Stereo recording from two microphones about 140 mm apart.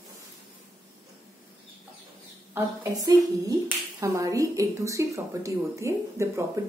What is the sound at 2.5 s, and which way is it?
Speech, 25° right (ahead or behind).